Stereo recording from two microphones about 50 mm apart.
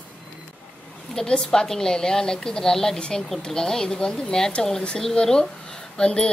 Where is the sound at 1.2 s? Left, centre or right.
Centre.